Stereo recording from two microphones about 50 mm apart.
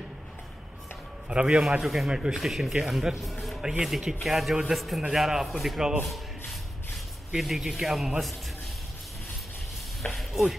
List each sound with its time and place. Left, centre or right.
1.3 s a man's voice: centre
1.6 s a man's voice: centre
7.3 s a man's voice: centre
10.1 s speech: centre